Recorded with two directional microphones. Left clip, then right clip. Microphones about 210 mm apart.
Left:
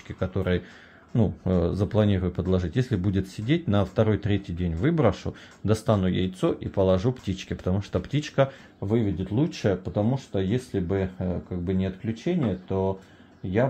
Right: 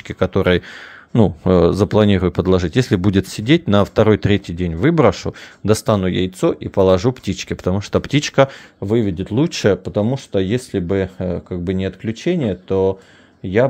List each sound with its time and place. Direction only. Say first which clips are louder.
0.1 s speech: right 12 dB; 45° right (ahead or behind)
8.7 s speech: right 7 dB; 55° right (ahead or behind)